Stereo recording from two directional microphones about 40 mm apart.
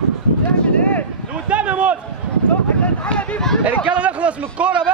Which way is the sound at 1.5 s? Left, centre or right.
Right.